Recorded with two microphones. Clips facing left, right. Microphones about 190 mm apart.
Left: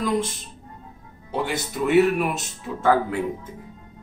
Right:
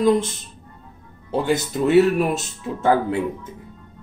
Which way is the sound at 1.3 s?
30° right (ahead or behind).